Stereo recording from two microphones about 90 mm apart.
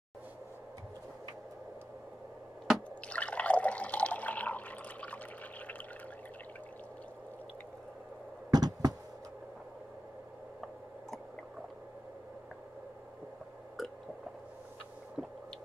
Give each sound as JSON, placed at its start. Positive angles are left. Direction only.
{"t": 3.1, "sound": "water", "side_deg": 15}
{"t": 8.5, "sound": "a sound", "side_deg": -45}
{"t": 13.8, "sound": "squish", "side_deg": 0}